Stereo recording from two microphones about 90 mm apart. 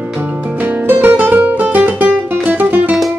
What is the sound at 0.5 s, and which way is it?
Music, 20° right (ahead or behind).